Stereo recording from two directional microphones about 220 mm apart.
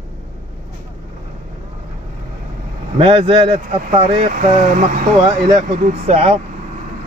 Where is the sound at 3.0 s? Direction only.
25° right (ahead or behind).